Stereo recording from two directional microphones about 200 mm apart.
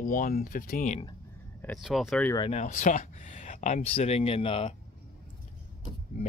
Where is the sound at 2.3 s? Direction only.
25° left (ahead or behind).